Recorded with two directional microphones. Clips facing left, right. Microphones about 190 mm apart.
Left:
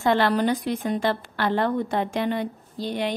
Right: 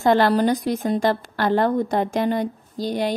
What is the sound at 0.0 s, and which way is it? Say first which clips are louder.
Speech: right 4 dB; 40° right (ahead or behind).